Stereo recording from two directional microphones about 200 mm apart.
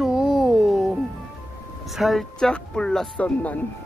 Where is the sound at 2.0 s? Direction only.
Centre (ahead or behind).